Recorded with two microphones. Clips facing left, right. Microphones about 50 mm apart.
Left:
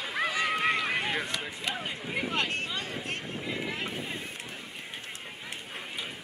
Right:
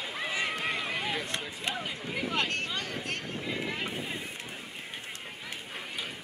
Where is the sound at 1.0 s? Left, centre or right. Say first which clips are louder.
Left 2 dB; centre.